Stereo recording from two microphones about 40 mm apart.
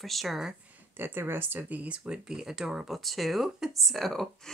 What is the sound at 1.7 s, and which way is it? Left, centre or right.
Speech, right.